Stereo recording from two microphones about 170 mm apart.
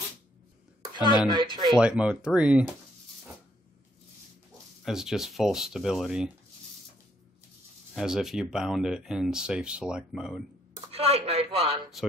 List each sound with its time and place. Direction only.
0.9 s speech: 25° left (ahead or behind)
1.3 s speech: 25° right (ahead or behind)
1.8 s speech: 5° right (ahead or behind)
4.8 s speech: 5° right (ahead or behind)
7.9 s speech: 5° right (ahead or behind)
10.7 s a sound: 35° right (ahead or behind)